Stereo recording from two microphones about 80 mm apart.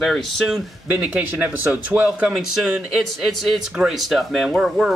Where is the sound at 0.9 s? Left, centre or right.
Centre.